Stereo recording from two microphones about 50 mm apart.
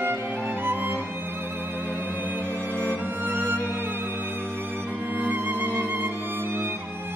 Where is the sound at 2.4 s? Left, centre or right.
Right.